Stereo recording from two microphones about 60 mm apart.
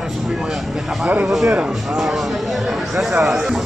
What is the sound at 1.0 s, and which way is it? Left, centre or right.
Speech, right.